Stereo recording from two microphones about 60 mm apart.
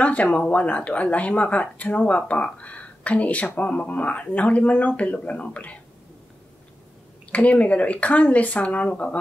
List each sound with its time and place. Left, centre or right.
0.0 s speech: left
7.3 s speech: left